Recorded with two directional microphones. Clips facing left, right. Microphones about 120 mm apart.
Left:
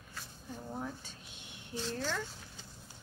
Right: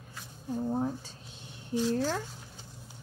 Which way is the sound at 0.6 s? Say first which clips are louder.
Right 11 dB; 30° right (ahead or behind).